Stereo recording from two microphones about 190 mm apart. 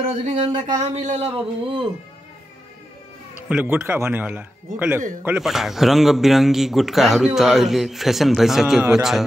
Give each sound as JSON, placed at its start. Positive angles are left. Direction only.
{"t": 0.3, "sound": "speech", "side_deg": -25}
{"t": 0.7, "sound": "speech", "side_deg": -40}
{"t": 3.4, "sound": "a man's voice", "side_deg": -5}